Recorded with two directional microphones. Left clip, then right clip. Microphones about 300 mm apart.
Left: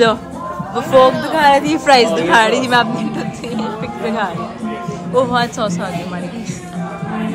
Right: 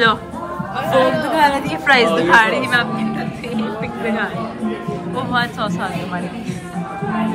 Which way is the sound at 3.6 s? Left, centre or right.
Centre.